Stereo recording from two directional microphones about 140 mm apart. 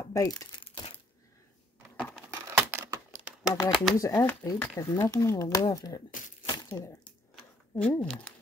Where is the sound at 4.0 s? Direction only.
25° left (ahead or behind).